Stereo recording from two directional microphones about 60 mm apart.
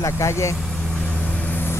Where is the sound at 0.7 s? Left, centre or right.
Centre.